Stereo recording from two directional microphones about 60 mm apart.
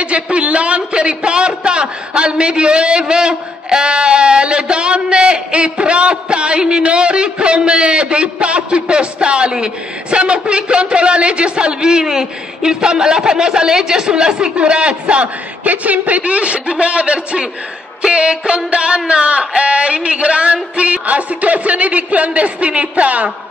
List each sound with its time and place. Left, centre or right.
0.0 s a man's voice: centre